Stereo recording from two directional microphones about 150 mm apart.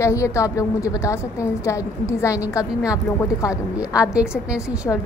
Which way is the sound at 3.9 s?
5° right (ahead or behind).